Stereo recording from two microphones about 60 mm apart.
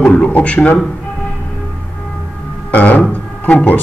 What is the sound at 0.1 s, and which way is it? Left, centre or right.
Speech, left.